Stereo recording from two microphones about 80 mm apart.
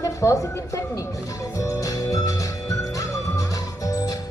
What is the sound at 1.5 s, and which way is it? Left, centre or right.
Music, left.